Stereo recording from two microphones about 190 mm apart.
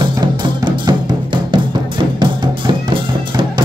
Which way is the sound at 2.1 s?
25° right (ahead or behind).